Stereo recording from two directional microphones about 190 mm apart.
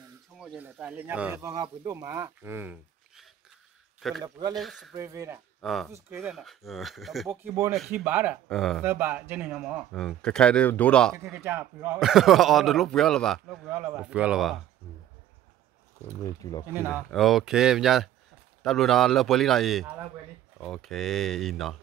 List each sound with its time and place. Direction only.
0.4 s speech: 5° right (ahead or behind)
4.2 s speech: 20° right (ahead or behind)
4.6 s a man's voice: centre (ahead or behind)
4.9 s speech: 15° right (ahead or behind)
5.6 s a man's voice: centre (ahead or behind)
7.2 s speech: 10° right (ahead or behind)
8.5 s a man's voice: centre (ahead or behind)
8.8 s a man's voice: 10° right (ahead or behind); by 11.1 s 5° left (ahead or behind)
11.2 s a man's voice: 10° right (ahead or behind)
13.7 s speech: 10° right (ahead or behind)
16.3 s speech: 20° left (ahead or behind)
16.7 s speech: 10° right (ahead or behind)
17.1 s a man's voice: centre (ahead or behind)